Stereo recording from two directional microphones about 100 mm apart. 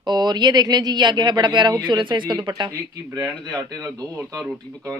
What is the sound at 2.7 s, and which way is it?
Speech, 35° right (ahead or behind).